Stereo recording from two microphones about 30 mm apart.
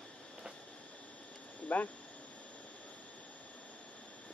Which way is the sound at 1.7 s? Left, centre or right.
Left.